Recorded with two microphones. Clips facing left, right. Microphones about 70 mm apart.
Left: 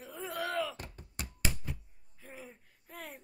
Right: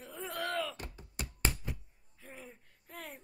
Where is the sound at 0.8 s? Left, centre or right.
Left.